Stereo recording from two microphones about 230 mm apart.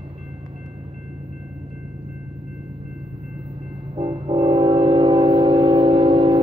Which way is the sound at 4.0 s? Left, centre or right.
Right.